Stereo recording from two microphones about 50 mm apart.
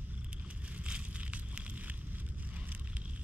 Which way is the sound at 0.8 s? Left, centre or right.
Right.